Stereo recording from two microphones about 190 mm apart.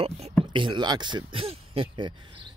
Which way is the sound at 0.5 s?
25° right (ahead or behind).